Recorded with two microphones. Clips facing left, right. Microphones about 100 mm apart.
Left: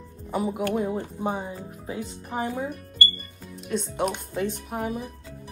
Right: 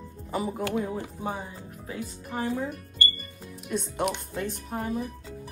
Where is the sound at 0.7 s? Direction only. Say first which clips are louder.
Left 3 dB; 15° left (ahead or behind).